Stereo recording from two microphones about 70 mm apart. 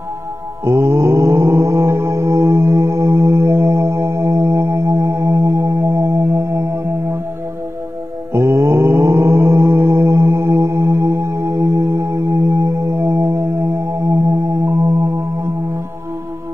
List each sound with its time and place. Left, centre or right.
0.7 s music: right
8.3 s mantra: right
11.7 s music: right
14.1 s music: right